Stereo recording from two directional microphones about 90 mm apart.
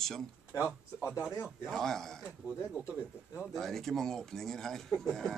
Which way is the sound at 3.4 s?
5° left (ahead or behind).